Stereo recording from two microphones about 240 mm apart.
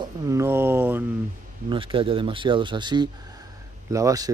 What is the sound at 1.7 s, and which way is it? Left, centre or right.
Speech, right.